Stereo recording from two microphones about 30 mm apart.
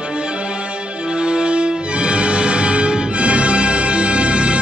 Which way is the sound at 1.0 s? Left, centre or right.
Right.